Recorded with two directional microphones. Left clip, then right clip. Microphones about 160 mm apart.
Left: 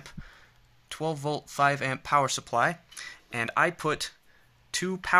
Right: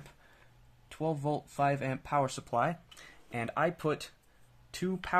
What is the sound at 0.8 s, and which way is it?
Speech, 5° left (ahead or behind).